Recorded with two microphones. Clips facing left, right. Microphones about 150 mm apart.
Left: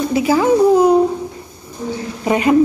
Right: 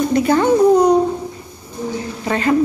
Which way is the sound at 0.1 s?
5° left (ahead or behind).